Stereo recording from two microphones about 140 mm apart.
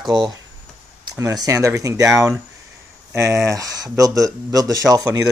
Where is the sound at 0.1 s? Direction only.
30° right (ahead or behind).